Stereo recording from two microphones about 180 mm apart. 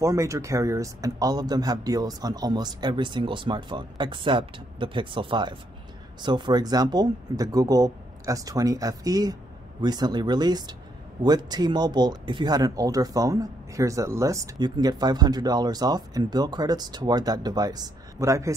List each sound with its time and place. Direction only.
0.0 s speech: 15° right (ahead or behind)